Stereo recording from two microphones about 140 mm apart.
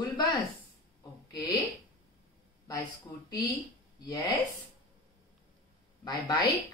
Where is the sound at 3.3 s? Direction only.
25° left (ahead or behind).